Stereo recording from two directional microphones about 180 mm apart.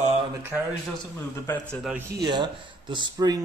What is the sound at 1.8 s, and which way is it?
Speech, 10° right (ahead or behind).